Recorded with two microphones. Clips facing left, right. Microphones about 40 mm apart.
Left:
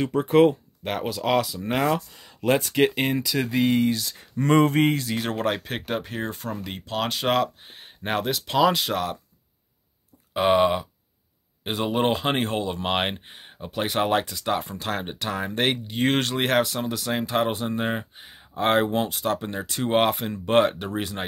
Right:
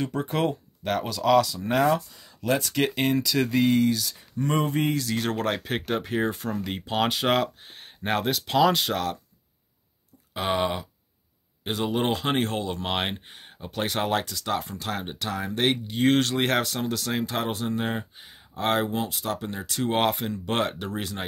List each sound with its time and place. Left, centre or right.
0.1 s speech: centre
4.2 s speech: left
5.0 s speech: centre
10.3 s speech: left
14.2 s speech: left
15.0 s speech: centre
16.3 s speech: centre
18.6 s speech: left
18.9 s speech: left
19.4 s speech: left